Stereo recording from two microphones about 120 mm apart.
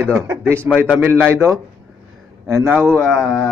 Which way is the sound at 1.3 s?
25° right (ahead or behind).